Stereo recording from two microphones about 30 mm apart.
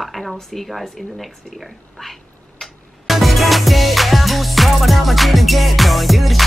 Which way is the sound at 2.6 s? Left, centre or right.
Centre.